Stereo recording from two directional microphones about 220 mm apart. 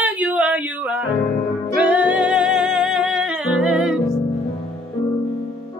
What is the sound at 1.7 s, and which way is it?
Music, 5° right (ahead or behind).